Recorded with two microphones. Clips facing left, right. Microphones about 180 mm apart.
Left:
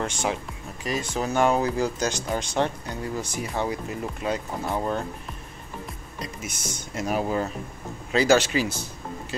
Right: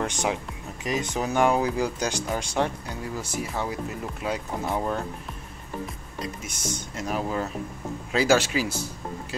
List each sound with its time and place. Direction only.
0.0 s speech: 15° right (ahead or behind)
6.4 s speech: 10° left (ahead or behind)
8.1 s speech: 5° right (ahead or behind)